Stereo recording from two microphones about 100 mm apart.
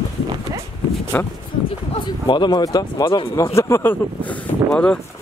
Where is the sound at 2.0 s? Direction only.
50° left (ahead or behind); by 5.0 s 10° left (ahead or behind).